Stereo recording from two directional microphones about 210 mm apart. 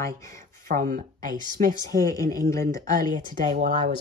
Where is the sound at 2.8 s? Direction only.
40° right (ahead or behind).